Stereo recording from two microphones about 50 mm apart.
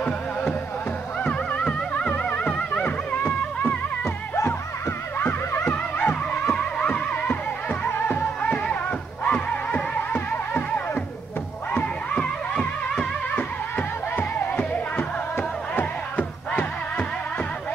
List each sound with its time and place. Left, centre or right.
1.6 s music: left
4.0 s music: left
5.2 s music: left
5.7 s music: left
7.9 s music: left
8.4 s music: left
10.1 s music: left
11.8 s music: left
13.3 s music: left
15.0 s music: left
15.8 s music: left